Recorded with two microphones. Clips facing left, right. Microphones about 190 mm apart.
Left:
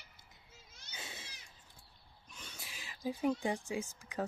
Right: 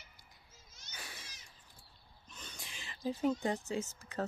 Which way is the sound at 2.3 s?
5° left (ahead or behind).